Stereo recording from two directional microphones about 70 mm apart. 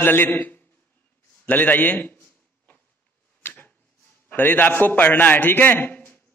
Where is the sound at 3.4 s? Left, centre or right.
Left.